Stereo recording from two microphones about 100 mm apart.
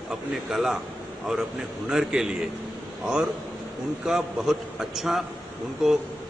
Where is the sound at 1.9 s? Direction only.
5° right (ahead or behind).